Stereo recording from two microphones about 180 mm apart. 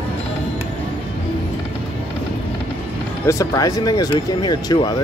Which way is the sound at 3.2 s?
20° left (ahead or behind).